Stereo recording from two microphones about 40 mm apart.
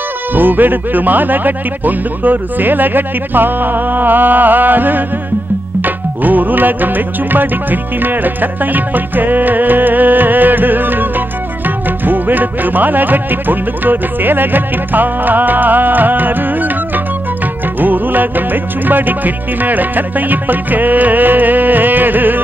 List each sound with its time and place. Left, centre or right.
0.3 s speech: right
5.8 s tabla: right
7.3 s speech: right